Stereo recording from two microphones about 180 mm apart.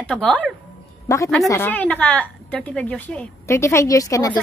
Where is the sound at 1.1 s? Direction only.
20° left (ahead or behind).